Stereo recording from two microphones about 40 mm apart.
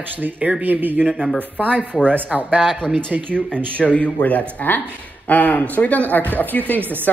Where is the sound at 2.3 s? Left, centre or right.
Right.